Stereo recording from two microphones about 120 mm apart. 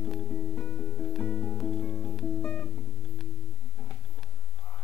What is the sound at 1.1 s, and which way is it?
Music, 10° left (ahead or behind).